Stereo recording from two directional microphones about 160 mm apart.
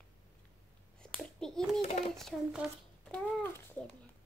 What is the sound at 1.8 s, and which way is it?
Child singing, 45° left (ahead or behind).